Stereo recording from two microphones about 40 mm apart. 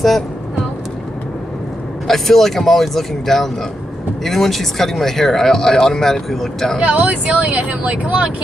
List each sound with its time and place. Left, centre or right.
2.0 s speech: centre
6.8 s speech: right